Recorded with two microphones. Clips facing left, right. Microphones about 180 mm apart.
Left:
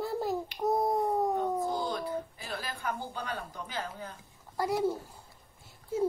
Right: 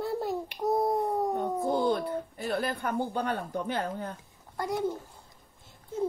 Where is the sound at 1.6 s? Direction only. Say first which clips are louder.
Right 5 dB; 60° right (ahead or behind).